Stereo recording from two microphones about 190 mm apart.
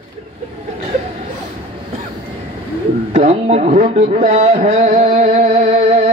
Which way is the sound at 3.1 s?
35° right (ahead or behind).